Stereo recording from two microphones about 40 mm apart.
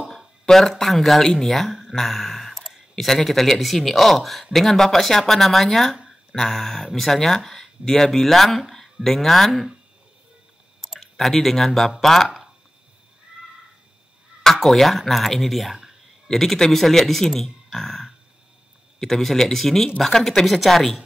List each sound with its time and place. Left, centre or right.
0.5 s a man's voice: centre
10.8 s a man's voice: centre
14.4 s speech: centre
16.3 s a man's voice: centre